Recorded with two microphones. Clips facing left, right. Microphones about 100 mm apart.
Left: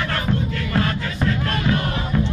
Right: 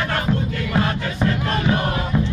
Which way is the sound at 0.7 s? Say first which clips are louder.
Right 1 dB; 20° right (ahead or behind).